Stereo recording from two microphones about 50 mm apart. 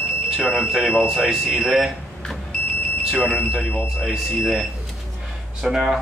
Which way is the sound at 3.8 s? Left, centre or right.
Centre.